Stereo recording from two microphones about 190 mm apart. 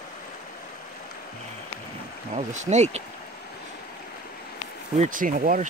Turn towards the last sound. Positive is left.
turn(degrees=-45)  # may be behind; listen again after turning